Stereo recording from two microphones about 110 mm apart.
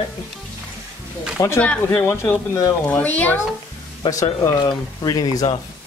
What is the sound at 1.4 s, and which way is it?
Speech, 30° left (ahead or behind).